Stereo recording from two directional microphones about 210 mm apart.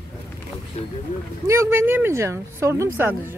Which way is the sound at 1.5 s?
10° right (ahead or behind).